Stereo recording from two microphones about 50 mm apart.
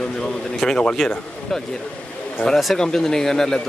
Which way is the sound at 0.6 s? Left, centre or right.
Centre.